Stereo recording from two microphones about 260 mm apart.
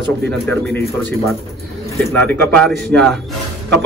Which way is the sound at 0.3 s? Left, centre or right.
Centre.